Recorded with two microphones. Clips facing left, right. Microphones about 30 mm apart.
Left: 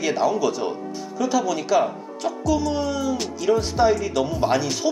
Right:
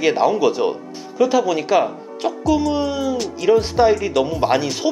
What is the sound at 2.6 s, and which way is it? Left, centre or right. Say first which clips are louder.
Speech: right 3 dB; centre.